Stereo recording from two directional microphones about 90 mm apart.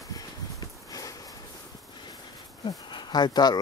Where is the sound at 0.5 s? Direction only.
40° left (ahead or behind).